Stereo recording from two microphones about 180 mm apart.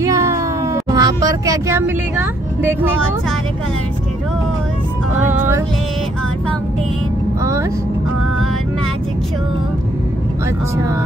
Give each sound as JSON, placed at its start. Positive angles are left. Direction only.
{"t": 0.0, "sound": "meow", "side_deg": -15}
{"t": 0.9, "sound": "speech", "side_deg": -20}
{"t": 5.3, "sound": "speech", "side_deg": -10}